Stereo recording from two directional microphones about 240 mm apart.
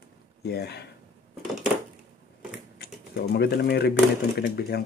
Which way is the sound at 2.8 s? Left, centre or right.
Left.